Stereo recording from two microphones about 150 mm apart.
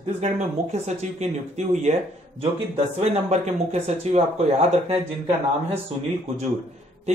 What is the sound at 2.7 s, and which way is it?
Speech, 45° right (ahead or behind).